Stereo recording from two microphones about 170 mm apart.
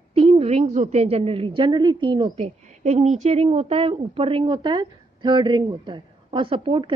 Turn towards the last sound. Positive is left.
turn(degrees=-30)  # may be behind; listen again after turning